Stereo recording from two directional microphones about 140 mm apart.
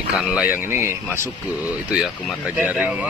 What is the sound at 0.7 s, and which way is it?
Speech, 20° right (ahead or behind).